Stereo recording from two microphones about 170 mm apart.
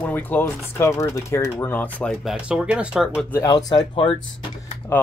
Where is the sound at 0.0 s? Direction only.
10° left (ahead or behind).